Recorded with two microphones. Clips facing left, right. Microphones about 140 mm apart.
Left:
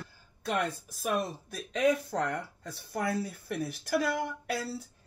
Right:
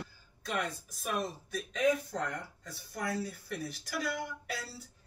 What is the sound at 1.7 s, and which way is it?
Speech, 70° left (ahead or behind).